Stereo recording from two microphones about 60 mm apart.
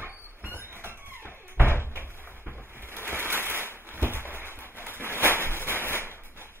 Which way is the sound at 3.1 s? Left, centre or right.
Right.